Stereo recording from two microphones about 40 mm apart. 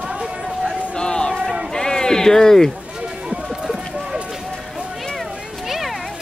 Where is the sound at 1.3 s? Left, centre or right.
Centre.